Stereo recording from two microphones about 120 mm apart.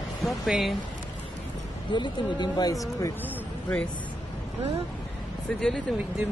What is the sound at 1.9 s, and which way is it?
Speech, 40° left (ahead or behind).